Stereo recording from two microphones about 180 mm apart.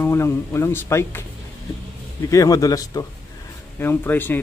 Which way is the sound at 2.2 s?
20° left (ahead or behind).